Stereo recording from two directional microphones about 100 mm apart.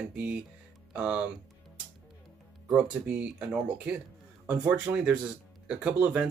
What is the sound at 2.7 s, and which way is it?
Speech, 10° right (ahead or behind).